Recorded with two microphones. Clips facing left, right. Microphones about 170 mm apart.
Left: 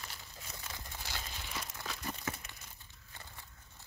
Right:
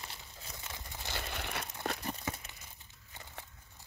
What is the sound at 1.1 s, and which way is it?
Crumpling, 65° right (ahead or behind).